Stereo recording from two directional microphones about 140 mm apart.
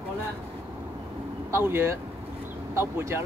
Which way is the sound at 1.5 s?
15° right (ahead or behind).